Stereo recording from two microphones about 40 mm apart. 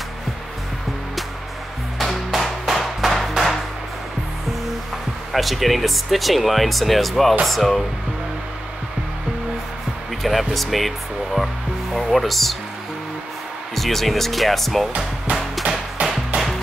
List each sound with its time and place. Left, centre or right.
2.0 s music: centre
2.7 s hammer: centre
5.3 s speech: centre
10.2 s speech: centre
13.7 s speech: centre
16.0 s music: right